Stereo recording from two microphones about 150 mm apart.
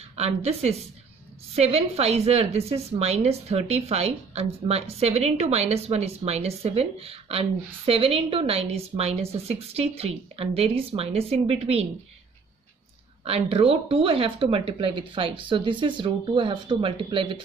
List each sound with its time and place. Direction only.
0.1 s a woman's voice: 45° right (ahead or behind)
13.2 s speech: 40° right (ahead or behind)